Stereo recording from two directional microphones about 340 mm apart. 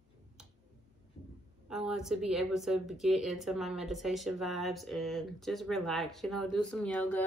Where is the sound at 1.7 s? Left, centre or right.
Centre.